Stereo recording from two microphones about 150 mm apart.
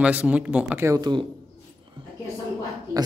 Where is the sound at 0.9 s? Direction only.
30° right (ahead or behind).